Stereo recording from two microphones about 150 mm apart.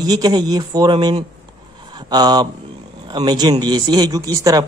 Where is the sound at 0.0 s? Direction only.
25° right (ahead or behind).